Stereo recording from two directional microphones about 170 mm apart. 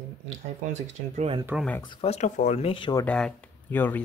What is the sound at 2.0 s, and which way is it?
Speech, 40° left (ahead or behind).